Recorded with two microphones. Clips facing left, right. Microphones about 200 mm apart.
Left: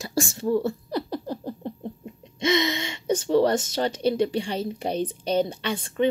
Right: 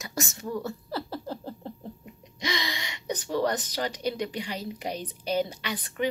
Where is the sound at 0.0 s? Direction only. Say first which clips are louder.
Left 8 dB; 30° left (ahead or behind).